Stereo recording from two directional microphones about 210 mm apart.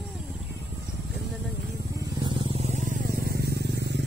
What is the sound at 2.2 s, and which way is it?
Vehicle, 25° right (ahead or behind).